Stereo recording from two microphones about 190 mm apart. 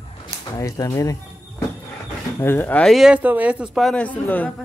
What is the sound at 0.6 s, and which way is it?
Speech, 20° left (ahead or behind).